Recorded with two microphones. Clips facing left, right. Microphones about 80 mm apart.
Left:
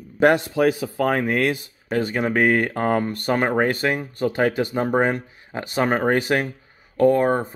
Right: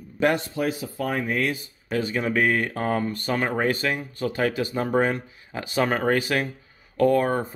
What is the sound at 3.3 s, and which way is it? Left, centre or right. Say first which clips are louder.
Speech: left 4 dB; left.